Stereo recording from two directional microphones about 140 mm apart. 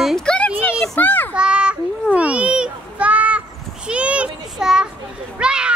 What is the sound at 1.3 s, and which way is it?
Children playing, 5° right (ahead or behind).